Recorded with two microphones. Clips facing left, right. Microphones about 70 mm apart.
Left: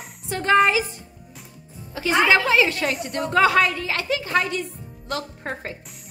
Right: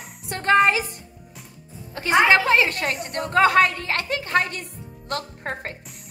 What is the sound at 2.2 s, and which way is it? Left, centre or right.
A woman's voice, right.